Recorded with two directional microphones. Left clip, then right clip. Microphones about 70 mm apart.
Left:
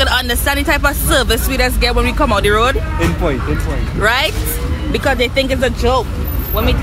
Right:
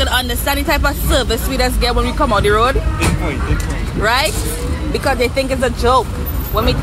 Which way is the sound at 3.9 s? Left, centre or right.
Left.